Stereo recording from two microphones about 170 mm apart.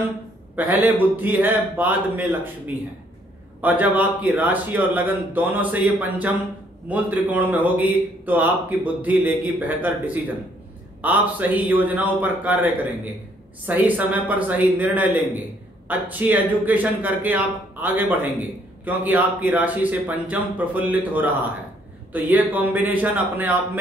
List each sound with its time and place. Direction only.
0.6 s a man's voice: 10° right (ahead or behind)
3.6 s a man's voice: 10° right (ahead or behind)